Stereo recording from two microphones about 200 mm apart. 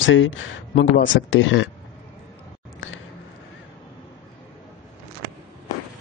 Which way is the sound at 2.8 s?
75° left (ahead or behind).